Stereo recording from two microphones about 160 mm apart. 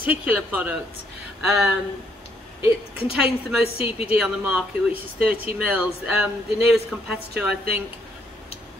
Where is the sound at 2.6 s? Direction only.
35° left (ahead or behind).